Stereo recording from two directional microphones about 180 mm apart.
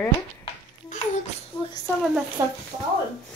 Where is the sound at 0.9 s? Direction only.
45° left (ahead or behind).